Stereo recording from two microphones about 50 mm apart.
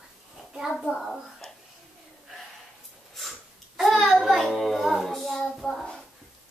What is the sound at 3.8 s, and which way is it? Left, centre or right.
Child singing, centre.